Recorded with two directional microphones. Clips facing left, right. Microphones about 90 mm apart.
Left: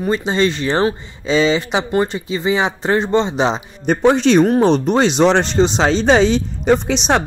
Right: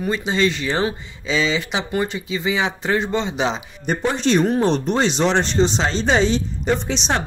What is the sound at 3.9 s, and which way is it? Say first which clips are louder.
Speech: left 6 dB; 70° left (ahead or behind).